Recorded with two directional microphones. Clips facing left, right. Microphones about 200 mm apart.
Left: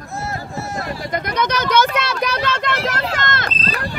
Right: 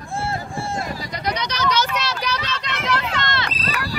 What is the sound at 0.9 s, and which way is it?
Speech, 50° left (ahead or behind).